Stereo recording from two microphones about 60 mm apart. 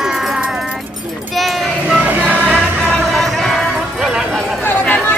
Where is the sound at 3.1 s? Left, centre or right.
Centre.